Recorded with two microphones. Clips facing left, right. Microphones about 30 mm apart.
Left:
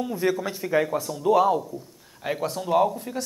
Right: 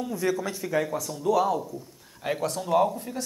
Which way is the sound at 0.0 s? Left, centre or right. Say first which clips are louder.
Left 2 dB; left.